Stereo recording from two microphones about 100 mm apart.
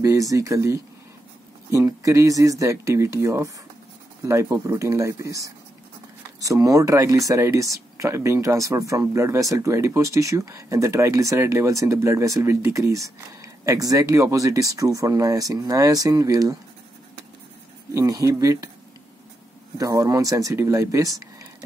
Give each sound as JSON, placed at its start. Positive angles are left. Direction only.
{"t": 0.0, "sound": "speech", "side_deg": -35}
{"t": 17.9, "sound": "speech", "side_deg": -30}
{"t": 19.8, "sound": "speech", "side_deg": -35}